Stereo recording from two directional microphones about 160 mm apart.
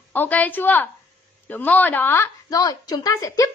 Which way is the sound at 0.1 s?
10° left (ahead or behind).